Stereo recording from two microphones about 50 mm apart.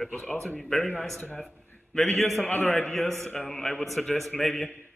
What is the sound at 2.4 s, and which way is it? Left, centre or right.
Speech, left.